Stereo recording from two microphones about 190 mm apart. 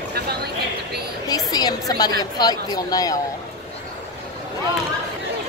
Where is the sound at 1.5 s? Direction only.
20° left (ahead or behind).